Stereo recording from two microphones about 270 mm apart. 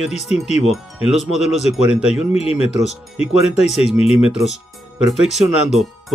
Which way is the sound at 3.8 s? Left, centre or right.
Left.